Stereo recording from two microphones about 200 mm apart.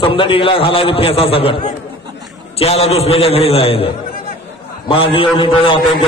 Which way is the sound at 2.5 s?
30° left (ahead or behind).